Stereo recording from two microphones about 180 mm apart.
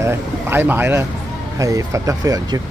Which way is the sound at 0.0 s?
10° right (ahead or behind).